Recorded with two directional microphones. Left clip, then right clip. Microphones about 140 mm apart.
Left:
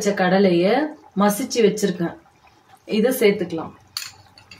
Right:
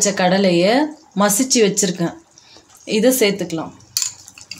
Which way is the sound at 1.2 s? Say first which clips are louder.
Right 3 dB; 90° right.